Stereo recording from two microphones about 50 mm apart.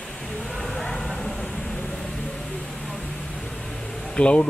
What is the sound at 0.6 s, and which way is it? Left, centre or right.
Vehicle, centre.